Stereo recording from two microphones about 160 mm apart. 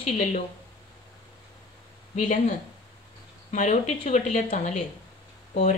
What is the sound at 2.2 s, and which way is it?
Speech, 50° left (ahead or behind).